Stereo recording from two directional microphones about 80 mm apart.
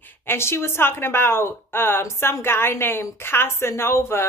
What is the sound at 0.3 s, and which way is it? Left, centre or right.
A woman's voice, left.